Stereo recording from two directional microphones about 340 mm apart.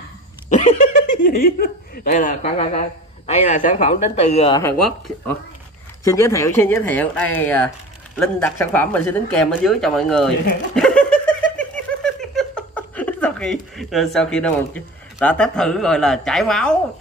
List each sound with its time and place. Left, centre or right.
1.1 s speech: left; by 16.7 s centre